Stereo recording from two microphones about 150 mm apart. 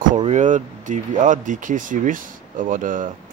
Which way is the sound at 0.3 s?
55° right (ahead or behind).